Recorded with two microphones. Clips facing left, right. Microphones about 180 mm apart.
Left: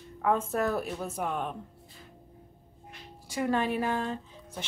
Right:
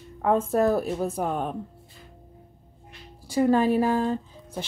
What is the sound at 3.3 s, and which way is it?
Speech, 35° right (ahead or behind).